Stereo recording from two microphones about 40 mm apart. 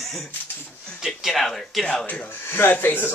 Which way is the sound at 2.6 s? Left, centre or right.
Left.